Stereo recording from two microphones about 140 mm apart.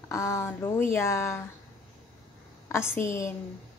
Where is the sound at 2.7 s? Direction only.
15° left (ahead or behind).